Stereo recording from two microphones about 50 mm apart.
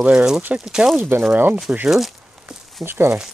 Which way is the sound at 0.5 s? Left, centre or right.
Right.